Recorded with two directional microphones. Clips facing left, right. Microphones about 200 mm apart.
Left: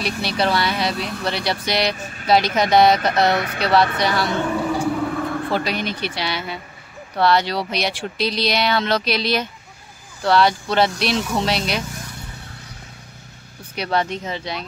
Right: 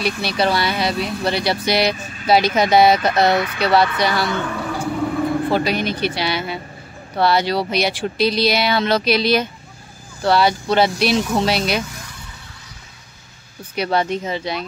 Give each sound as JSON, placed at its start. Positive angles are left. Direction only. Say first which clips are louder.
{"t": 0.0, "sound": "speech", "louder": "right 2 dB", "side_deg": 0}
{"t": 3.3, "sound": "speech", "louder": "right 3 dB", "side_deg": 50}
{"t": 4.3, "sound": "a sound", "louder": "left 2 dB", "side_deg": 25}
{"t": 5.0, "sound": "vehicle", "louder": "right 4 dB", "side_deg": -10}
{"t": 5.5, "sound": "speech", "louder": "right 4 dB", "side_deg": -5}
{"t": 13.7, "sound": "speech", "louder": "right 3 dB", "side_deg": -5}